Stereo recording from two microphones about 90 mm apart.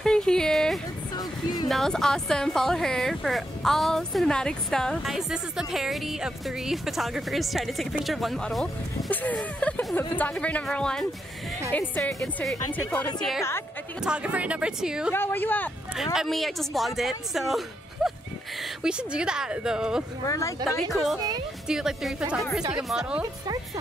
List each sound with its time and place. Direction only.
0.0 s music: 5° left (ahead or behind)
1.1 s music: 50° left (ahead or behind)
1.7 s speech: 5° left (ahead or behind)
5.0 s speech: 5° right (ahead or behind)
9.1 s a woman's voice: 15° left (ahead or behind)
12.7 s a woman's voice: 15° left (ahead or behind)
14.0 s speech: 10° right (ahead or behind)
15.1 s speech: 25° left (ahead or behind)
16.0 s speech: 5° right (ahead or behind)
20.2 s a woman's voice: 35° left (ahead or behind)
20.9 s speech: 5° right (ahead or behind)